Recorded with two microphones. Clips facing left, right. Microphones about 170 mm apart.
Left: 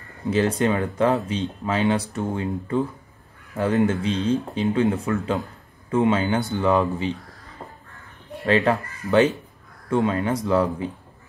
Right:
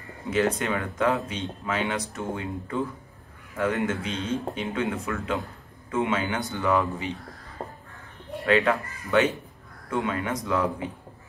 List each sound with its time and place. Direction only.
0.3 s speech: 30° left (ahead or behind)
8.5 s speech: 30° left (ahead or behind)